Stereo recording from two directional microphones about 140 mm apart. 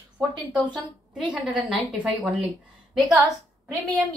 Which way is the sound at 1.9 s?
10° right (ahead or behind).